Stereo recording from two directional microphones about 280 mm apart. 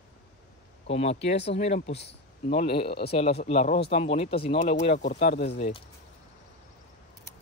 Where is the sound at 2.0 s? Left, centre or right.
Left.